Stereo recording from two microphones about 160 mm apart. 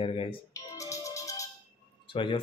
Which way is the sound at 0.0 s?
35° left (ahead or behind).